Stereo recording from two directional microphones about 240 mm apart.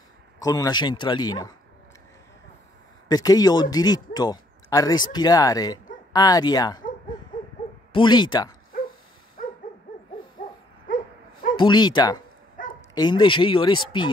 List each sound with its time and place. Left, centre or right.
0.4 s speech: centre
3.1 s a man's voice: centre
7.9 s speech: centre
11.5 s speech: centre
12.6 s bow-wow: left
12.9 s speech: centre